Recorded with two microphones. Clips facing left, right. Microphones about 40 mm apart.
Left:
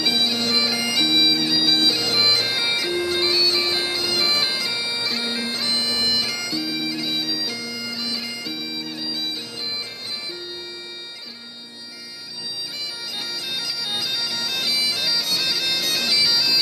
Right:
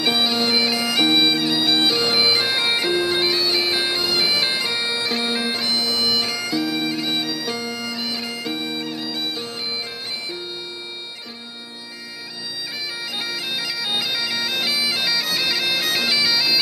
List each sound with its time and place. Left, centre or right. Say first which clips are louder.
0.0 s bagpipes: right 2 dB; right
4.1 s bagpipes: even; centre
4.4 s bagpipes: right 2 dB; right
5.8 s bagpipes: right 2 dB; right
6.0 s bagpipes: right 2 dB; right
13.2 s bagpipes: right 2 dB; centre